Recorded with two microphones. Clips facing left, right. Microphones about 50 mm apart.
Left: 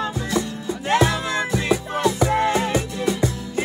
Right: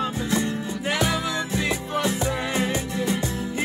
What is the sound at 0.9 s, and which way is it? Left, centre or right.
Music, left.